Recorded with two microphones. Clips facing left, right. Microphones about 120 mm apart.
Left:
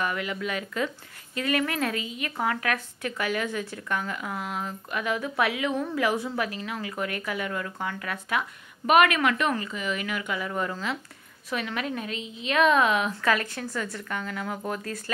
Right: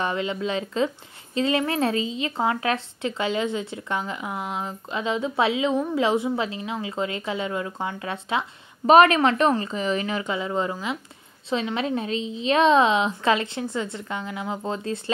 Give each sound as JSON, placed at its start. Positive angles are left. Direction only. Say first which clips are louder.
{"t": 0.0, "sound": "speech", "louder": "right 4 dB", "side_deg": -25}